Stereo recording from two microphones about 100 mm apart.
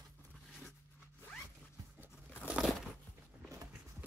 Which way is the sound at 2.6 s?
Centre (ahead or behind).